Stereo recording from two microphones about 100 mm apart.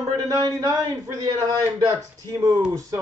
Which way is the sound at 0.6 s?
30° right (ahead or behind).